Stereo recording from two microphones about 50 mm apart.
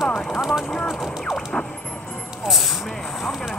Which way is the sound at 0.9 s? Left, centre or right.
Centre.